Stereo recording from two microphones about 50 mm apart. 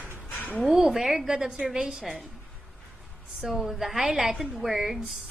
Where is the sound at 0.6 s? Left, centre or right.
Centre.